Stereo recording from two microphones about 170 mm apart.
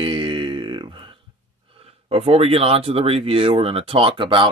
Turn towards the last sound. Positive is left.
turn(degrees=-30)  # may be behind; listen again after turning